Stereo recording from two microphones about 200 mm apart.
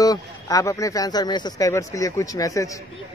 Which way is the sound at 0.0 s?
15° left (ahead or behind).